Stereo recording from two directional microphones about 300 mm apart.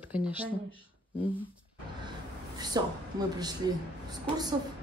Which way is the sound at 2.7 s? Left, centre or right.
Centre.